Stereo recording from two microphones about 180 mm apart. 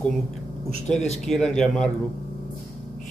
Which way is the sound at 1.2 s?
5° left (ahead or behind).